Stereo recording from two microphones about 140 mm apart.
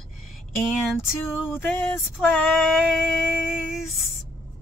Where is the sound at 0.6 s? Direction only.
5° right (ahead or behind).